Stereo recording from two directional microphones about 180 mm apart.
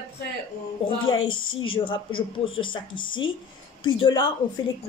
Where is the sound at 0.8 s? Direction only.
30° left (ahead or behind).